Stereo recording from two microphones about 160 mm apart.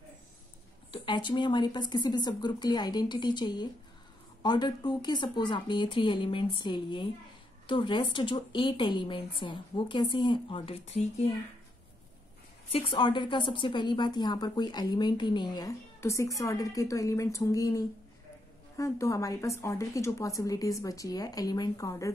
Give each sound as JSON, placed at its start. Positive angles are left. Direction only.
{"t": 0.9, "sound": "a woman's voice", "side_deg": 30}
{"t": 12.7, "sound": "a woman's voice", "side_deg": 30}